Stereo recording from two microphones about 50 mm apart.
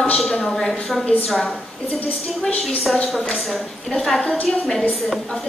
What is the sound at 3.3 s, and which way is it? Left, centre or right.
A woman's voice, centre.